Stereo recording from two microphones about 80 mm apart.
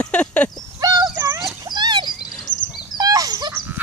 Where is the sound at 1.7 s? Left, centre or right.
Right.